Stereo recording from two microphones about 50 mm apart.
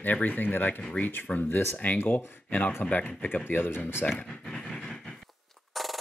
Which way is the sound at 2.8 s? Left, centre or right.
Left.